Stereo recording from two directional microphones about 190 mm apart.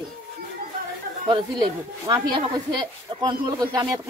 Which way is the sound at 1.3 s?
20° right (ahead or behind).